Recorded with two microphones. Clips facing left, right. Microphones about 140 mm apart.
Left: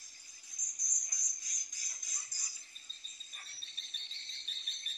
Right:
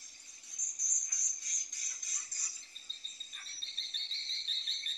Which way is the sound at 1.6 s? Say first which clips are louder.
Even; 75° right (ahead or behind).